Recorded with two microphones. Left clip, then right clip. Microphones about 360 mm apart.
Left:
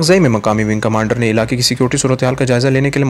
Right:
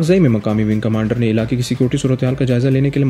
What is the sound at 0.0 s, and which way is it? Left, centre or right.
Speech, centre.